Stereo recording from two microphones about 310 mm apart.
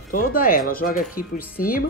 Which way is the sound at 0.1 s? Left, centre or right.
Left.